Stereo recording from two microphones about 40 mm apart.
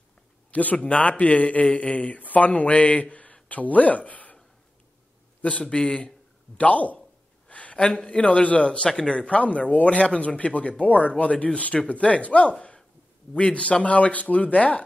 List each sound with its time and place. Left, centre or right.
0.5 s speech: left
5.4 s a man's voice: left
6.7 s a man's voice: left
9.4 s speech: left
13.8 s speech: left